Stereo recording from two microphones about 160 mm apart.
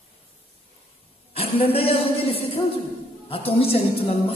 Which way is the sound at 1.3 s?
35° left (ahead or behind).